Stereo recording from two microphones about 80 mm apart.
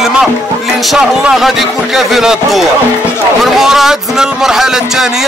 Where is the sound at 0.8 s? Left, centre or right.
Centre.